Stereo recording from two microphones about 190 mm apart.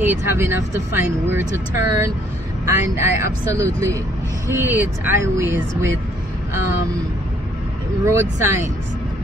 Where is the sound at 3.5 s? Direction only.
15° right (ahead or behind).